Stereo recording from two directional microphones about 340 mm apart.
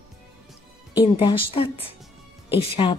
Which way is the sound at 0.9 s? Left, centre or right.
Centre.